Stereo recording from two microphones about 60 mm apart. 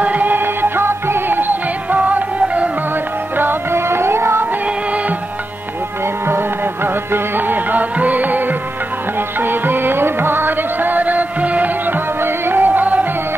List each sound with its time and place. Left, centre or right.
0.0 s music: right
3.3 s music: right
6.2 s music: right
9.4 s music: right